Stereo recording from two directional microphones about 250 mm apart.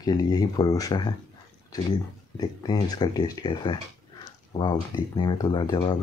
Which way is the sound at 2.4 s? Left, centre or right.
Centre.